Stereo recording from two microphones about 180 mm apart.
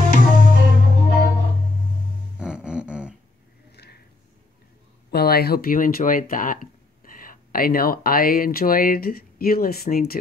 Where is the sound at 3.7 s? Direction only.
65° left (ahead or behind).